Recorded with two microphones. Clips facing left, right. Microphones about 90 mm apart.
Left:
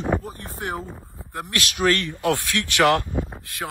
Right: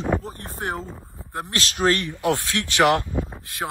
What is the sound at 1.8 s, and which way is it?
Speech, 20° right (ahead or behind).